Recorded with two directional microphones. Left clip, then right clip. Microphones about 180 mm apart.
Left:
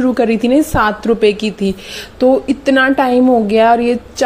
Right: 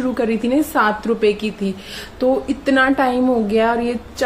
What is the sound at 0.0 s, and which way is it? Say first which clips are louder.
A woman's voice: left 6 dB; 35° left (ahead or behind).